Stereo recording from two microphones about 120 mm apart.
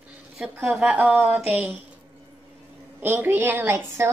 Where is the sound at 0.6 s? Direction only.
15° right (ahead or behind).